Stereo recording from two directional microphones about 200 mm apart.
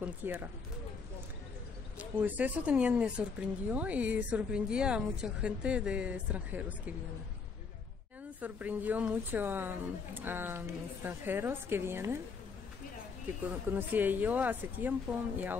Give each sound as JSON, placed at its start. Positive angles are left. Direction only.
{"t": 0.0, "sound": "speech", "side_deg": -10}
{"t": 2.0, "sound": "speech", "side_deg": -10}
{"t": 8.4, "sound": "speech", "side_deg": -10}
{"t": 13.5, "sound": "speech", "side_deg": -10}